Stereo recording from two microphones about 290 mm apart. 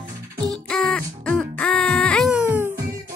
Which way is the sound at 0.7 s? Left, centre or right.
Centre.